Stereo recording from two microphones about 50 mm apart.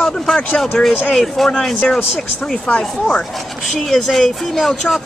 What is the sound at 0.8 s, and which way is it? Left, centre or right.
Speech, centre.